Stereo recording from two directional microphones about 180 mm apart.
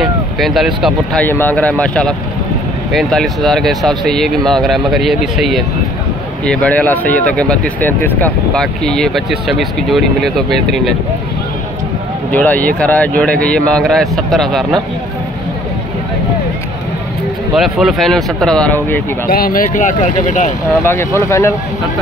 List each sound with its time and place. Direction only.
0.0 s speech: centre (ahead or behind)
1.2 s a man's voice: 10° left (ahead or behind)
12.3 s a man's voice: 10° left (ahead or behind)
17.6 s speech: centre (ahead or behind)
19.2 s speech: 55° left (ahead or behind)
20.7 s a man's voice: 10° left (ahead or behind)